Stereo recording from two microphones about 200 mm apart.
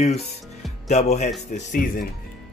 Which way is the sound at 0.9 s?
35° left (ahead or behind).